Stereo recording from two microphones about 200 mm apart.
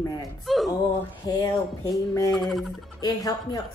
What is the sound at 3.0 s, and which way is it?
Speech, 20° left (ahead or behind).